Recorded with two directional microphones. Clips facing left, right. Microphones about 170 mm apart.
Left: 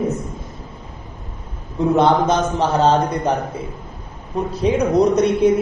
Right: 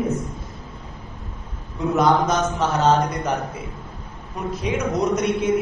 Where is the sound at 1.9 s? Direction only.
30° left (ahead or behind).